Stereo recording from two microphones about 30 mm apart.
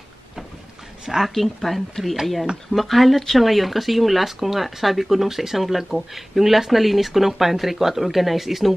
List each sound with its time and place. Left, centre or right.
1.0 s a woman's voice: centre
1.3 s speech: centre